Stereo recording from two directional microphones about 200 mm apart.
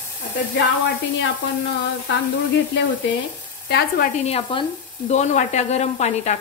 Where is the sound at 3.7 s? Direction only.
55° left (ahead or behind).